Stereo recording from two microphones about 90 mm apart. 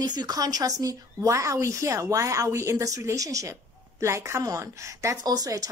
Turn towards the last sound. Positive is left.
turn(degrees=-40)  # may be behind; listen again after turning